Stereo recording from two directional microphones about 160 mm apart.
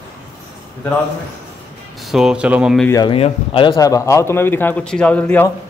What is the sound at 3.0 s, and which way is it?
A man's voice, 35° left (ahead or behind).